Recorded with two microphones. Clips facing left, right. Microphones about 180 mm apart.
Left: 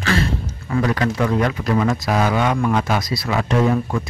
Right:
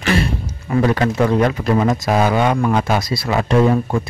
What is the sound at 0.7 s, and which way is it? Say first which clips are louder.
Speech: right 3 dB; 30° right (ahead or behind).